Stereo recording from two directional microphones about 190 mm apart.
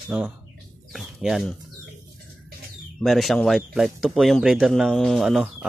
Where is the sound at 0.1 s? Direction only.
10° right (ahead or behind).